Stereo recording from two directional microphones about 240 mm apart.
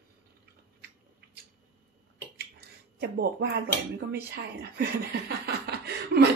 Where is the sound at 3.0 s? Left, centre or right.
Right.